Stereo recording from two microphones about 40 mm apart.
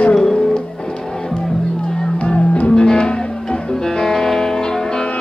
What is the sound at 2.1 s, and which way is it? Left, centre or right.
Music, left.